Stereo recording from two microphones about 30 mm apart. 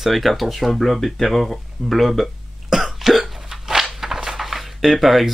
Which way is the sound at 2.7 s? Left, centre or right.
Centre.